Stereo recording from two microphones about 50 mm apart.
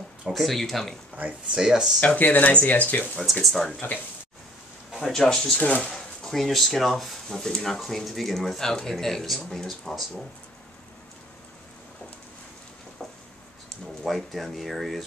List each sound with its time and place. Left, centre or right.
0.3 s speech: centre
1.5 s speech: centre
2.0 s speech: left
3.4 s speech: centre
5.0 s speech: centre
14.0 s speech: centre